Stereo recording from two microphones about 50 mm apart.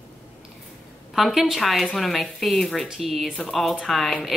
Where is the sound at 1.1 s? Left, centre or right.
Centre.